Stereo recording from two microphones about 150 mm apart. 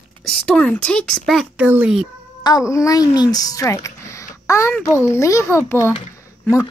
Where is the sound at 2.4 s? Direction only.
25° left (ahead or behind).